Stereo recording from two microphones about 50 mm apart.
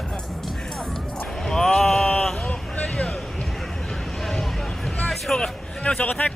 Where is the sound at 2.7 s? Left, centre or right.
Left.